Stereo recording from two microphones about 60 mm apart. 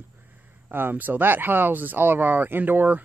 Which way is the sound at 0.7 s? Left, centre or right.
Right.